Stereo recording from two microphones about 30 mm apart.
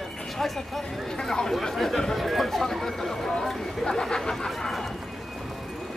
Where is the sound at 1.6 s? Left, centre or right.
Centre.